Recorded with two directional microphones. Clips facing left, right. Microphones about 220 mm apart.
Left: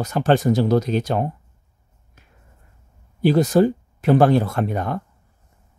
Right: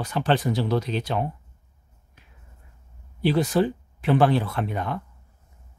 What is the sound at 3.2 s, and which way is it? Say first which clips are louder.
Speech: left 6 dB; 45° left (ahead or behind).